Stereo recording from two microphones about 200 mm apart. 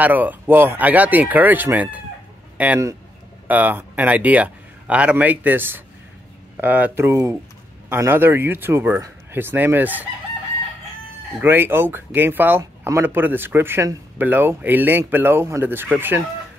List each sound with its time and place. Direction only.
0.0 s a man's voice: 10° right (ahead or behind)
11.4 s speech: 10° right (ahead or behind)